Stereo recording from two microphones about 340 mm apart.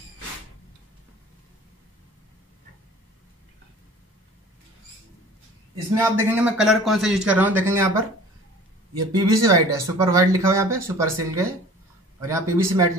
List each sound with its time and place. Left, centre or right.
5.9 s speech: centre